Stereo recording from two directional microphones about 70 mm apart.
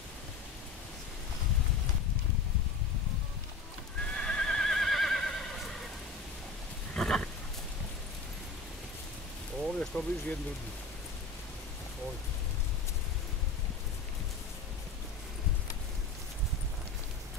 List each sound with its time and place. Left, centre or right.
4.0 s neigh: centre
6.9 s a sound: centre
9.8 s speech: left